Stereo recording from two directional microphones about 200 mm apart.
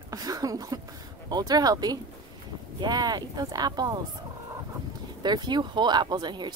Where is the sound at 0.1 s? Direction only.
20° right (ahead or behind).